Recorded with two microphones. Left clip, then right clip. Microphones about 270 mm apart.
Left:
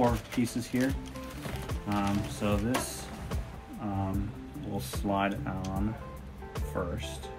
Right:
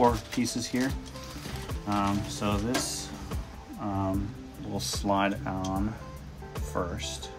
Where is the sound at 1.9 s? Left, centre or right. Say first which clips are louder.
Right 3 dB; centre.